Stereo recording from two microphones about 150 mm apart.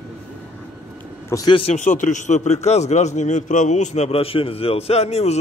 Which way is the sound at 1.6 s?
50° left (ahead or behind).